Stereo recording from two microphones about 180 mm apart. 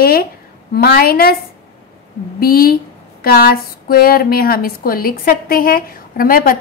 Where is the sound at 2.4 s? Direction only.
55° left (ahead or behind).